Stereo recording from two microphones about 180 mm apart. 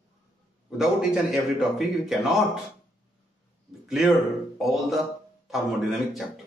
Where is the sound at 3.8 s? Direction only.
Centre (ahead or behind).